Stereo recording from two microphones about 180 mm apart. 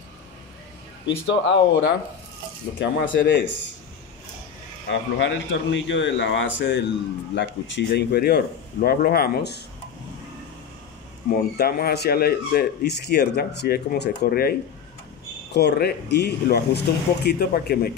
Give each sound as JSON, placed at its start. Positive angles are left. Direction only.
{"t": 1.0, "sound": "speech", "side_deg": 90}
{"t": 4.8, "sound": "speech", "side_deg": 90}
{"t": 11.2, "sound": "speech", "side_deg": 60}
{"t": 15.5, "sound": "speech", "side_deg": 70}